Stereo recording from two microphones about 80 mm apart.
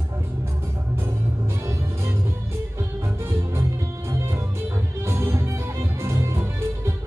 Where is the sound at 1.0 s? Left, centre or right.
Right.